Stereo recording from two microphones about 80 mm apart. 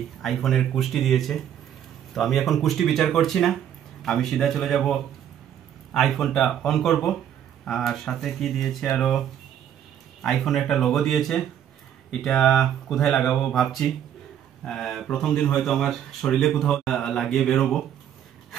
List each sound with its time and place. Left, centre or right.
0.2 s speech: centre
10.2 s speech: centre